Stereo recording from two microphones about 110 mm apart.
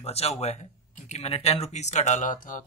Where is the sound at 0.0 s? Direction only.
65° left (ahead or behind); by 2.2 s 90° left.